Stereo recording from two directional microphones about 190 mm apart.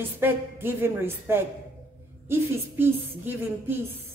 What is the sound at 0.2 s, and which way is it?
A woman's voice, 10° right (ahead or behind).